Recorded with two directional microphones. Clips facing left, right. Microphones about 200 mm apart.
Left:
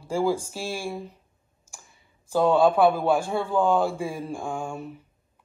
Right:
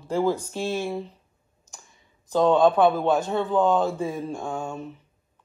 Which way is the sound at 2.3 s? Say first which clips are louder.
Right 1 dB; 10° left (ahead or behind).